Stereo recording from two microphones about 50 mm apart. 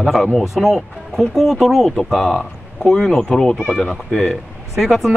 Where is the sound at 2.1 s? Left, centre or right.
Centre.